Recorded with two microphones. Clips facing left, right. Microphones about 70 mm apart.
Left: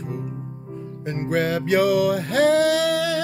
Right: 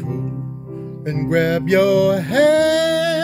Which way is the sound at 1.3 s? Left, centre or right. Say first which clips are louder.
Right 5 dB; right.